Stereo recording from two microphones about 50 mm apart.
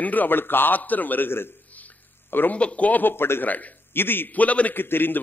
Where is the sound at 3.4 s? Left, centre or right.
Left.